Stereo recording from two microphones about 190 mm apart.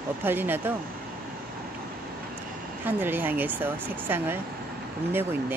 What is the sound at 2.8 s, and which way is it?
Speech, 10° right (ahead or behind).